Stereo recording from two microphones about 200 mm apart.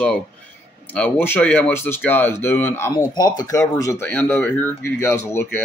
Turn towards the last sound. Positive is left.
turn(degrees=10)  # may be behind; listen again after turning